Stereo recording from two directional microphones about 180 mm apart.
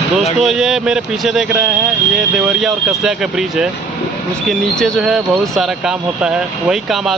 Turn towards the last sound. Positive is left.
turn(degrees=0)  # may be behind; listen again after turning